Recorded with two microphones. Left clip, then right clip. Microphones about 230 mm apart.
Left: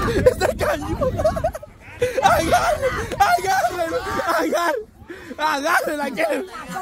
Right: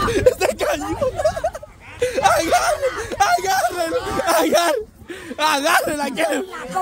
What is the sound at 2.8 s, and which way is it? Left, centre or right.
Speech, left.